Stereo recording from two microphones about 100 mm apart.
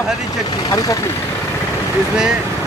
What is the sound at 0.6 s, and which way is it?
Speech, 35° left (ahead or behind).